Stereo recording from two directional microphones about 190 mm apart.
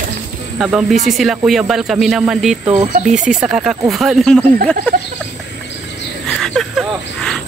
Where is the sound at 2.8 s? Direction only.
40° right (ahead or behind).